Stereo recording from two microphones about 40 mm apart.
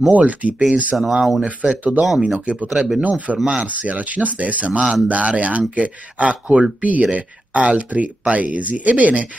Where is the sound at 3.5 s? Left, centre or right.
Right.